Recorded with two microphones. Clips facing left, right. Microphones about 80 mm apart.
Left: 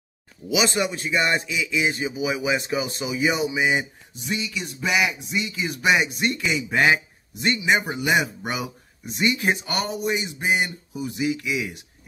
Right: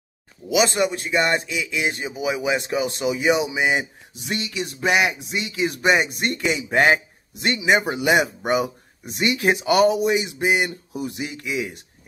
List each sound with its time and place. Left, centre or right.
0.5 s a man's voice: right
1.5 s a man's voice: right
4.7 s a man's voice: right
5.8 s speech: right
7.4 s speech: right
9.7 s speech: right